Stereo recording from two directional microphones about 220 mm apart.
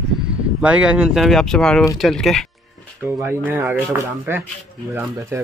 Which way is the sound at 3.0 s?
10° right (ahead or behind).